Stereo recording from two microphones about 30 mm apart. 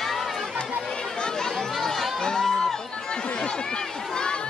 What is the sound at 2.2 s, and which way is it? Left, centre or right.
Music, centre.